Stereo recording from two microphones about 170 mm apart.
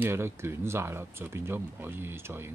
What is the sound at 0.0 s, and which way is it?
Speech, 15° right (ahead or behind).